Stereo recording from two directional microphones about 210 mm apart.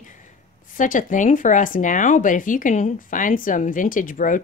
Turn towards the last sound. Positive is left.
turn(degrees=40)  # may be behind; listen again after turning